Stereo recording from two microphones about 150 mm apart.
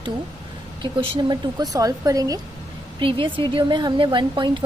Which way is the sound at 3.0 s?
35° right (ahead or behind).